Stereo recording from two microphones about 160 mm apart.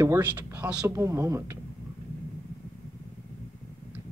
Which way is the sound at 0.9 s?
20° right (ahead or behind).